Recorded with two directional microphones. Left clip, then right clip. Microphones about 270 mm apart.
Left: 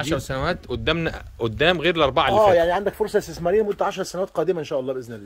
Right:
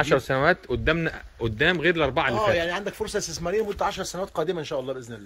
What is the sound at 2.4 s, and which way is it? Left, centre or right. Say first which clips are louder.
Speech: left 7 dB; left.